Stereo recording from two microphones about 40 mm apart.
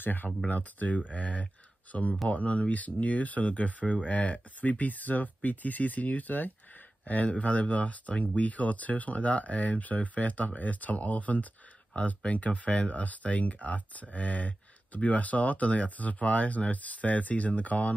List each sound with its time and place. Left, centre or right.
0.0 s speech: left
0.5 s speech: left